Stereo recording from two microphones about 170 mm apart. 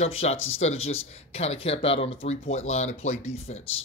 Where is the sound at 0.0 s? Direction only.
35° left (ahead or behind).